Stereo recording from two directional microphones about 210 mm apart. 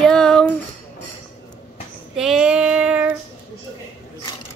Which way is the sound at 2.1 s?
Centre (ahead or behind).